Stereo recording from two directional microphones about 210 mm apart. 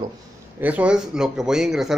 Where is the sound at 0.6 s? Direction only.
5° right (ahead or behind).